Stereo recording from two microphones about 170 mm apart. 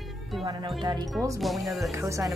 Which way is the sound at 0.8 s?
25° right (ahead or behind).